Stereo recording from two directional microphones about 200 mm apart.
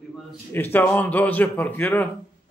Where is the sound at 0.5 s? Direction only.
10° left (ahead or behind).